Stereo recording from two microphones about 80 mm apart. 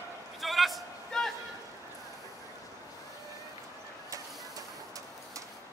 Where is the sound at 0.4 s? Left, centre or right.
Centre.